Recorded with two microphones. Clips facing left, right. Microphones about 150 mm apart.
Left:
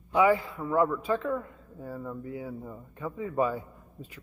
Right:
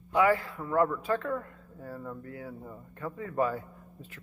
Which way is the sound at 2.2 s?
15° left (ahead or behind).